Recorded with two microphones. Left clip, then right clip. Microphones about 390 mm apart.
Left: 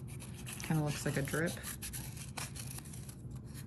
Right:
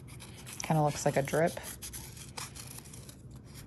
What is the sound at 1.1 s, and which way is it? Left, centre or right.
Speech, centre.